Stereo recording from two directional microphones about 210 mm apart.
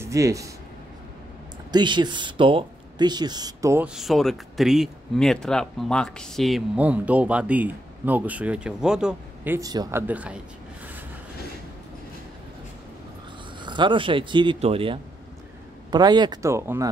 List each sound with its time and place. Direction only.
0.0 s speech: 15° right (ahead or behind)
1.7 s speech: 20° right (ahead or behind)
13.6 s speech: 20° right (ahead or behind)